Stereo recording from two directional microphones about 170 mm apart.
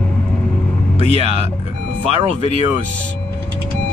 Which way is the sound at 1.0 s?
35° right (ahead or behind).